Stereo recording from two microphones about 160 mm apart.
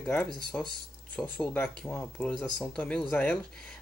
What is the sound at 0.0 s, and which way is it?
Speech, 5° left (ahead or behind).